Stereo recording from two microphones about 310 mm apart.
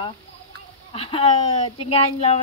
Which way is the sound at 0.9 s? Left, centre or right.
Centre.